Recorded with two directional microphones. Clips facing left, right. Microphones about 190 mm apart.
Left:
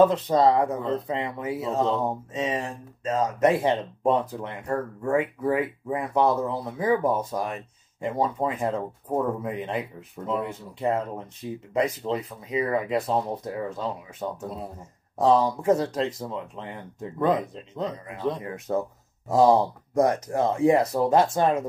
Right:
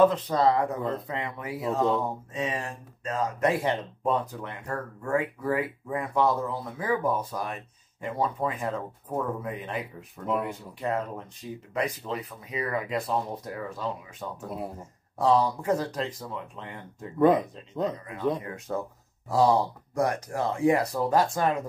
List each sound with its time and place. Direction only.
0.1 s speech: 25° left (ahead or behind)